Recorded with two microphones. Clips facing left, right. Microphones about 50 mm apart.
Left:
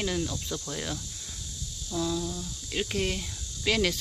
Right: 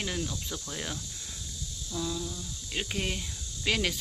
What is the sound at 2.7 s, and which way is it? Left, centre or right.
Speech, centre.